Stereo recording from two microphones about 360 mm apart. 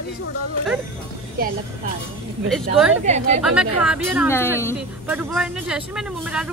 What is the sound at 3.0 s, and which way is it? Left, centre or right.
Speech, centre.